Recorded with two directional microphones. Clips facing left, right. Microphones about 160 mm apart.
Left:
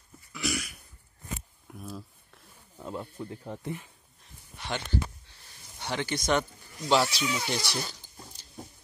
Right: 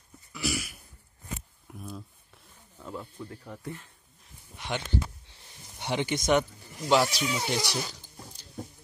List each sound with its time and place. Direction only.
0.3 s throat clearing: centre (ahead or behind)
1.7 s a sound: centre (ahead or behind)
2.8 s speech: 20° left (ahead or behind)
4.6 s a sound: 15° right (ahead or behind)
5.8 s speech: 20° right (ahead or behind)
7.1 s speech: 40° right (ahead or behind)
7.4 s speech: 15° right (ahead or behind)